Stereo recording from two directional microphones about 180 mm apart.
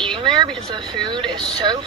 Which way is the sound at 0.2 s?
25° right (ahead or behind).